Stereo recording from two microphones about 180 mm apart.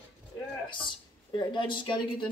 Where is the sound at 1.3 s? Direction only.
25° left (ahead or behind).